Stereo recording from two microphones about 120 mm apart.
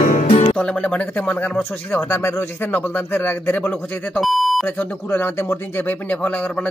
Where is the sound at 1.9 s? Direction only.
20° left (ahead or behind).